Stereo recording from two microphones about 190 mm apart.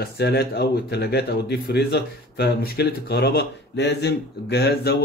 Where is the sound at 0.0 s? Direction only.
60° left (ahead or behind).